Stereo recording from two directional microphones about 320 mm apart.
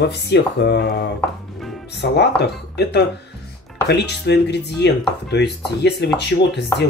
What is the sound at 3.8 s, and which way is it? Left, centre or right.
Speech, left.